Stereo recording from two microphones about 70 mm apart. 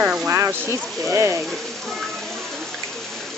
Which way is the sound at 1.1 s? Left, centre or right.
Right.